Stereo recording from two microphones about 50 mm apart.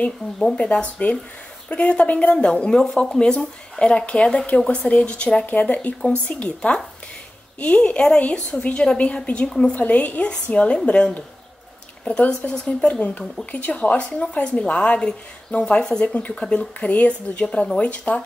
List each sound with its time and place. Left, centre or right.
0.4 s speech: centre
0.7 s a woman's voice: left
5.5 s a woman's voice: left
9.5 s speech: centre
9.8 s a woman's voice: left
12.0 s speech: centre
13.5 s a woman's voice: left
16.2 s a woman's voice: left